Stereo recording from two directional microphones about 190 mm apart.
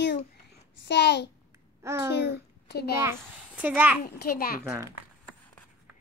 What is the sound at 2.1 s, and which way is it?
Speech, 65° left (ahead or behind).